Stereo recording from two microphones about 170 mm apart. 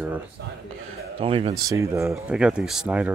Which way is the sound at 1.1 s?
35° right (ahead or behind).